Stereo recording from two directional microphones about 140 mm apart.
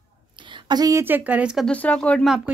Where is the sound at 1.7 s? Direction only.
10° left (ahead or behind).